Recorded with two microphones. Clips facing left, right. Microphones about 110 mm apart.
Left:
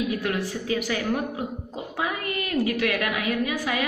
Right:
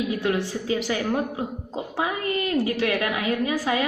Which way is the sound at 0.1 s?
25° right (ahead or behind).